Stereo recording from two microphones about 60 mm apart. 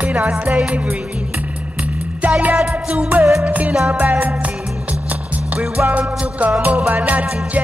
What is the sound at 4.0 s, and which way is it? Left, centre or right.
Music, right.